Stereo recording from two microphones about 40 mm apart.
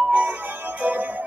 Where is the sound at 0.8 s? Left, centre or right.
Right.